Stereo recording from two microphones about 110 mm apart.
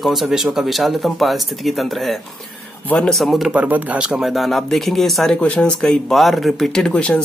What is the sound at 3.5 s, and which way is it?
Speech, 15° right (ahead or behind).